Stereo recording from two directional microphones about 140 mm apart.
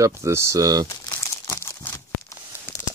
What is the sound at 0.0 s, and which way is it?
Speech, 20° right (ahead or behind).